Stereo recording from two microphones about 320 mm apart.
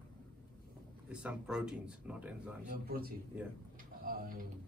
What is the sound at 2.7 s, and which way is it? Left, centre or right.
A man's voice, right.